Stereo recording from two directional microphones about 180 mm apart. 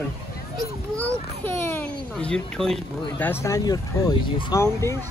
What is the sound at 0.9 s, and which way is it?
A child's voice, 10° left (ahead or behind).